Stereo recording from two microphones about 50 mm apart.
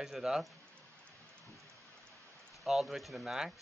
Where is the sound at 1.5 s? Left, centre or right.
Right.